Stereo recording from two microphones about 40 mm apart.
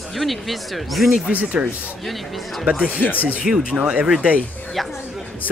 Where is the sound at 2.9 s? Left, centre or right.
Left.